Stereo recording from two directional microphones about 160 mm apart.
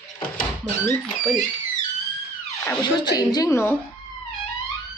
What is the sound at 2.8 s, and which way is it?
Speech, 25° left (ahead or behind).